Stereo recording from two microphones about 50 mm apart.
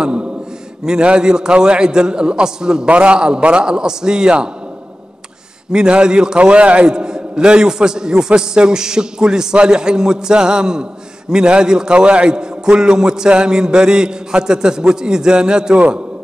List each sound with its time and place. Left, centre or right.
0.0 s a sound: centre
0.8 s a man's voice: centre
5.7 s a man's voice: centre